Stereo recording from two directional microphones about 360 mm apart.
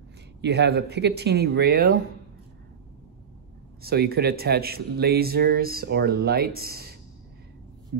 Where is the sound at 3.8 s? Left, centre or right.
Right.